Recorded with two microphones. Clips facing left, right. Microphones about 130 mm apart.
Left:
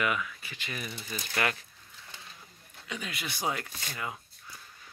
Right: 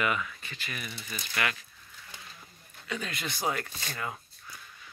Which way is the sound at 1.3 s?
35° left (ahead or behind).